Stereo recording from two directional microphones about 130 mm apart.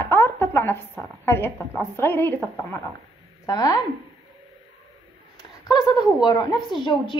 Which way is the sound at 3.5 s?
30° left (ahead or behind).